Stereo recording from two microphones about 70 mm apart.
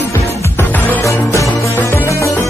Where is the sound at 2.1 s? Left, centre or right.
Left.